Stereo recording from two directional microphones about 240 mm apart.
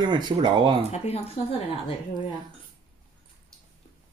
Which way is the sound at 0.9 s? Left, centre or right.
Left.